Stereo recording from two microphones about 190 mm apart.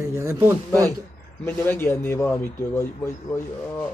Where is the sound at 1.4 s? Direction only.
10° left (ahead or behind).